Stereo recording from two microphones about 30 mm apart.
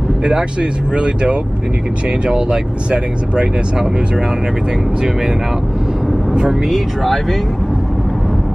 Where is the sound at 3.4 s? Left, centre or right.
Centre.